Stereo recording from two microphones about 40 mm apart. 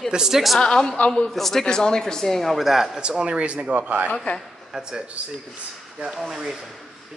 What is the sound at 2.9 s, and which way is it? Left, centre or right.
Speech, right.